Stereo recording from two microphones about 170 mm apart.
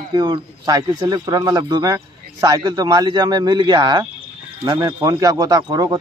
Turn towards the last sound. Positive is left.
turn(degrees=-25)  # may be behind; listen again after turning